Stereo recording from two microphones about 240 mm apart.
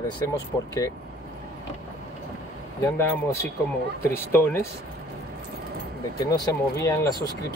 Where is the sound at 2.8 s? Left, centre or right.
Centre.